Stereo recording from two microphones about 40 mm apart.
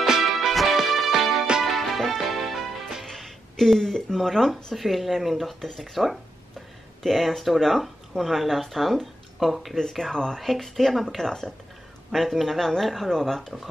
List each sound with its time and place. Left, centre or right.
0.4 s music: centre
3.1 s a sound: centre
4.7 s speech: centre
9.8 s speech: centre
10.4 s speech: centre
11.1 s speech: centre
12.1 s speech: centre